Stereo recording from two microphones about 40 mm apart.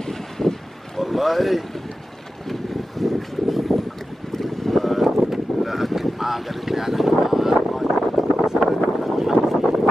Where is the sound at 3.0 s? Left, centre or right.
Centre.